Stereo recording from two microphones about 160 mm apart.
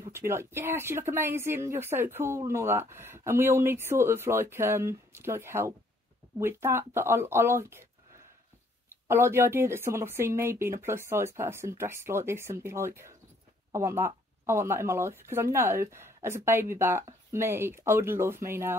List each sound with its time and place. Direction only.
0.1 s speech: 15° right (ahead or behind)
8.8 s speech: 15° right (ahead or behind)